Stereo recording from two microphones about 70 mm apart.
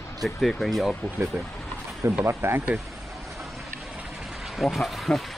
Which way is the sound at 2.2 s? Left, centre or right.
Right.